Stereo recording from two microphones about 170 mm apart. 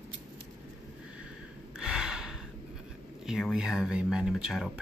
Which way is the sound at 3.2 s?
5° right (ahead or behind).